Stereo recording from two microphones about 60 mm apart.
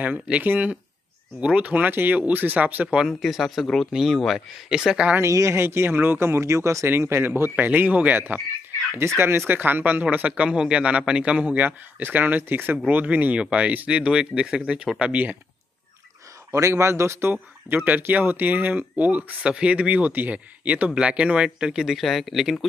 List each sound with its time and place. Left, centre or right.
0.0 s a man's voice: right
3.1 s speech: centre
5.2 s speech: right
5.6 s speech: right
6.4 s speech: right
6.9 s speech: right
8.9 s speech: right
9.5 s a man's voice: right
13.0 s a man's voice: right
16.5 s speech: right
17.3 s a man's voice: right; by 21.8 s centre
21.8 s speech: centre